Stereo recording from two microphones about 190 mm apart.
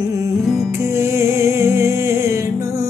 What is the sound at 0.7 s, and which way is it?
Music, 15° right (ahead or behind).